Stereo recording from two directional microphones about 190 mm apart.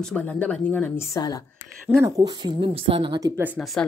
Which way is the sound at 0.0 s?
5° left (ahead or behind).